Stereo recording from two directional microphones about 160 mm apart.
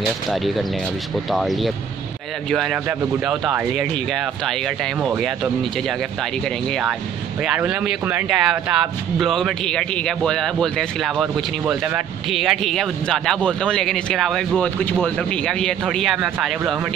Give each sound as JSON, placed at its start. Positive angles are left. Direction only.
{"t": 1.3, "sound": "speech", "side_deg": 0}
{"t": 5.0, "sound": "speech", "side_deg": 0}
{"t": 7.4, "sound": "speech", "side_deg": -5}
{"t": 12.3, "sound": "speech", "side_deg": 0}